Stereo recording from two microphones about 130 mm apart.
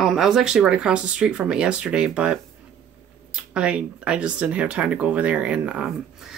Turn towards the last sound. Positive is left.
turn(degrees=-5)  # may be behind; listen again after turning